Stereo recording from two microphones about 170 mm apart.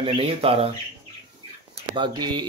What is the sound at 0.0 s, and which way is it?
Speech, 30° right (ahead or behind).